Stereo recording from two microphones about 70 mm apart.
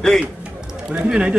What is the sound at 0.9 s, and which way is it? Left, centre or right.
Speech, centre.